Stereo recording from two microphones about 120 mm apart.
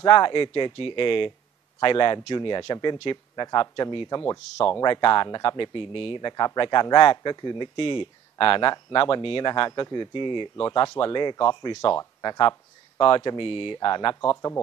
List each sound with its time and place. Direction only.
0.0 s a man's voice: 45° left (ahead or behind)